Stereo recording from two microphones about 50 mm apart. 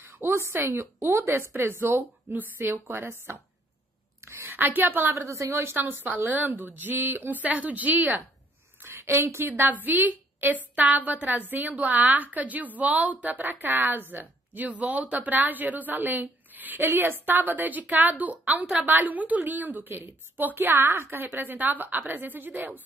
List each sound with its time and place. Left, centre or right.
0.3 s a woman's voice: right
1.1 s a woman's voice: right
4.5 s a woman's voice: right
5.2 s a woman's voice: right
5.6 s a woman's voice: right
5.9 s a woman's voice: right
8.8 s a sound: right
9.3 s a woman's voice: right
9.8 s a woman's voice: right
20.5 s a woman's voice: right